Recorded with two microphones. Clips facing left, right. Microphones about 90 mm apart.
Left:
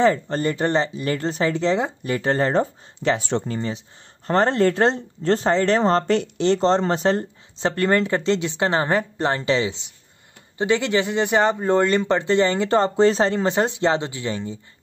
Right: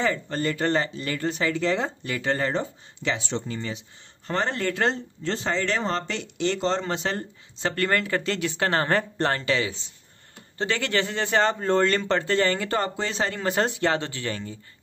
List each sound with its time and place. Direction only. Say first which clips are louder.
0.0 s speech: left 7 dB; 30° left (ahead or behind)
1.0 s speech: left 4 dB; 35° left (ahead or behind)
2.1 s speech: left 6 dB; 35° left (ahead or behind)
7.2 s speech: left 6 dB; 25° left (ahead or behind)